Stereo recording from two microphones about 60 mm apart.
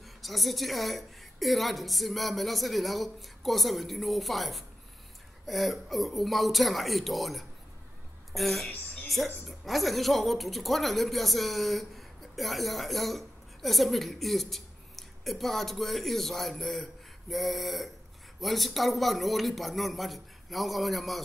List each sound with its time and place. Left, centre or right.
0.0 s a woman's voice: centre
8.6 s speech: left
9.5 s a woman's voice: centre